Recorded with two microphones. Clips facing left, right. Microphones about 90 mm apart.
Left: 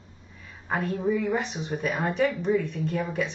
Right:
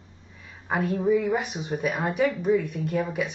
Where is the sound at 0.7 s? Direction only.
15° right (ahead or behind).